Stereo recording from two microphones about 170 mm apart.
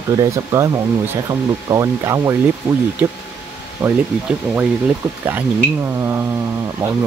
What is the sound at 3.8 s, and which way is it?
Speech, 15° right (ahead or behind).